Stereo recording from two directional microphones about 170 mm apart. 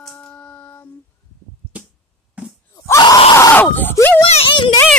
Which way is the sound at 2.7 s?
20° left (ahead or behind).